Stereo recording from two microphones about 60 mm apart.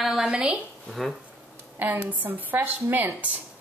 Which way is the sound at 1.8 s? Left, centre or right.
Right.